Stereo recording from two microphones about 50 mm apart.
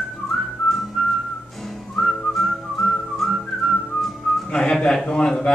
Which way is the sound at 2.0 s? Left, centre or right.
Centre.